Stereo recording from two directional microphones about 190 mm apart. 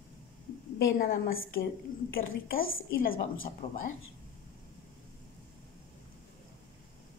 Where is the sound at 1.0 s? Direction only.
45° left (ahead or behind).